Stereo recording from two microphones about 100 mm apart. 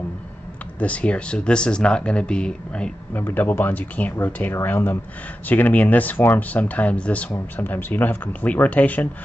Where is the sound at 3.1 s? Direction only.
20° left (ahead or behind).